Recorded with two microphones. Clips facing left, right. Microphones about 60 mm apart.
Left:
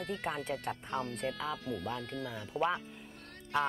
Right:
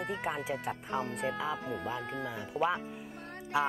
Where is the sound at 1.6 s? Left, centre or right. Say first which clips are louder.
Right 2 dB; right.